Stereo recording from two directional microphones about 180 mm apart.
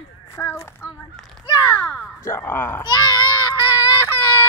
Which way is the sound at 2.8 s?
25° left (ahead or behind).